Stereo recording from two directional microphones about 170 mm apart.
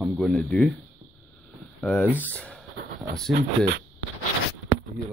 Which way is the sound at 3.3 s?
65° right (ahead or behind).